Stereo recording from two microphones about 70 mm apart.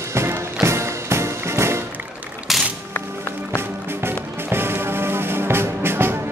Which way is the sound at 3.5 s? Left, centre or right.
Right.